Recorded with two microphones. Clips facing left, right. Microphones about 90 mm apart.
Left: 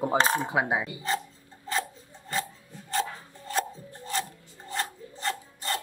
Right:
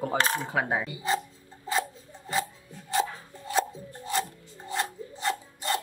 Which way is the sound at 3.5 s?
5° right (ahead or behind).